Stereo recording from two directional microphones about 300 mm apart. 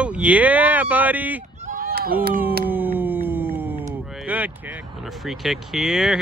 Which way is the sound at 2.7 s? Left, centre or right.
Centre.